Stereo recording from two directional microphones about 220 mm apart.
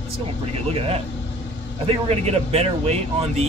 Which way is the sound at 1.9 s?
30° right (ahead or behind).